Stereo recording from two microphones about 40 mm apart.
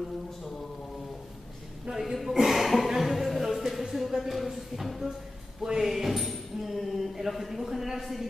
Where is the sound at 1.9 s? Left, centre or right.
Centre.